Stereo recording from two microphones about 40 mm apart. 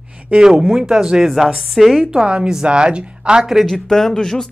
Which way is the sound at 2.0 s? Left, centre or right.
Right.